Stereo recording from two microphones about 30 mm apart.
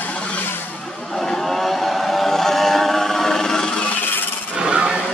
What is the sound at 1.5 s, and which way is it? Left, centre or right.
Vehicle, centre.